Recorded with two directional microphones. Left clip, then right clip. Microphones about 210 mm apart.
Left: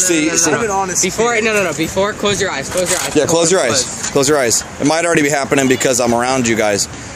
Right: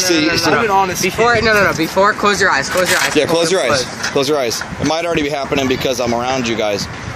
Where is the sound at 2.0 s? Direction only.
20° left (ahead or behind); by 6.8 s 40° left (ahead or behind).